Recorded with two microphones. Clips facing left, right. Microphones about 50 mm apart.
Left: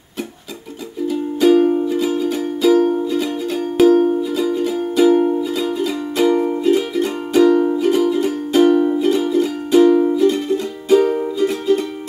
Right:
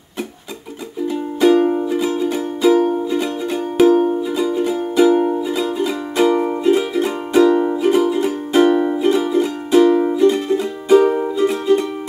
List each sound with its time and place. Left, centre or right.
1.0 s music: centre
6.3 s music: right
6.6 s music: centre
9.8 s music: right
10.1 s music: centre